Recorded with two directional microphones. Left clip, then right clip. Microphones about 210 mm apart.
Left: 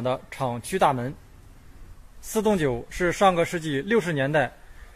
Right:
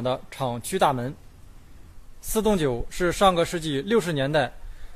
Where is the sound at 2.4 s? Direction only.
15° right (ahead or behind).